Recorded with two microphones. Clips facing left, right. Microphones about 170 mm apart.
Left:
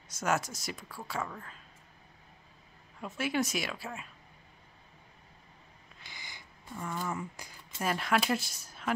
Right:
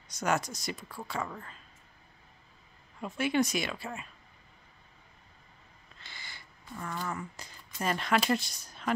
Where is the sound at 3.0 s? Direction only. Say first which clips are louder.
Right 3 dB; 5° left (ahead or behind).